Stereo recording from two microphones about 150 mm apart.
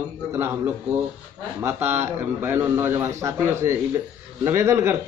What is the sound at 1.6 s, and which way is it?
Speech, 15° right (ahead or behind).